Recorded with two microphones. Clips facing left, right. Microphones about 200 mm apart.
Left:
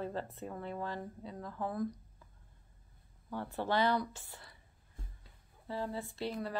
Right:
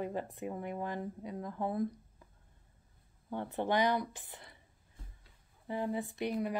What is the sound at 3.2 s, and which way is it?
Speech, 20° right (ahead or behind).